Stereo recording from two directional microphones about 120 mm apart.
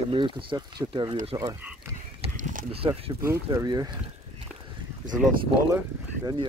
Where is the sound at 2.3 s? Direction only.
90° right.